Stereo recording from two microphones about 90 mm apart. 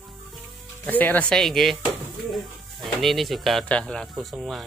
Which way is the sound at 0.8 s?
20° left (ahead or behind).